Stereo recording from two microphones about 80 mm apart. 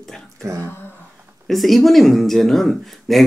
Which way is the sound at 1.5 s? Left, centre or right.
Centre.